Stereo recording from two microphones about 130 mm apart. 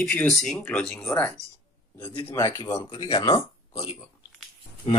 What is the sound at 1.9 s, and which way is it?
Speech, 20° left (ahead or behind).